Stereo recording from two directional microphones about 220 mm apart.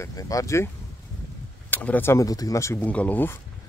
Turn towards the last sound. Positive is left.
turn(degrees=10)  # may be behind; listen again after turning